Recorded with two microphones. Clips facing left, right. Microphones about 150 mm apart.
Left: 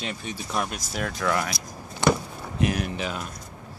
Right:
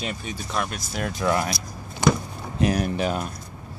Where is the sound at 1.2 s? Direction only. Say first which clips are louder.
Right 3 dB; 25° right (ahead or behind).